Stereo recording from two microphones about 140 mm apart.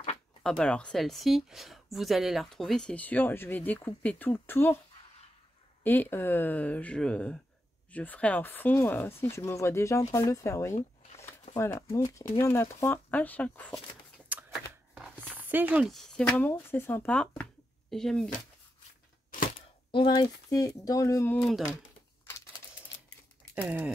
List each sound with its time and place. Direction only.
0.4 s a woman's voice: 5° left (ahead or behind)
5.9 s speech: 15° left (ahead or behind)
14.5 s a sound: 5° right (ahead or behind)
15.3 s speech: 10° right (ahead or behind)
15.9 s speech: 5° left (ahead or behind)
17.4 s a sound: 5° left (ahead or behind)
20.2 s speech: 25° left (ahead or behind)
21.4 s a woman's voice: centre (ahead or behind)
23.5 s speech: 10° right (ahead or behind)